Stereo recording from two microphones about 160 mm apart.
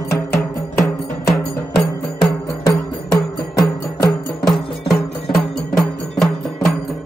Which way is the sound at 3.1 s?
20° left (ahead or behind).